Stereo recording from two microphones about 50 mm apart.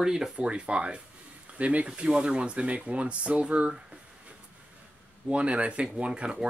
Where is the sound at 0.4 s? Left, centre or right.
Right.